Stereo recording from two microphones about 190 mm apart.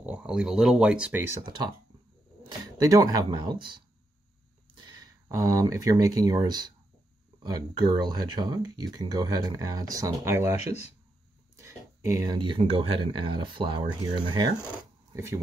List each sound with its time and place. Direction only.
0.0 s speech: 5° right (ahead or behind)
2.6 s speech: 20° right (ahead or behind)
5.0 s speech: 20° right (ahead or behind)
11.5 s speech: 15° right (ahead or behind)